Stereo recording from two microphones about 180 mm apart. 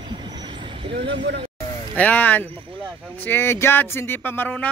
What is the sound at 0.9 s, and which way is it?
Speech, 80° right.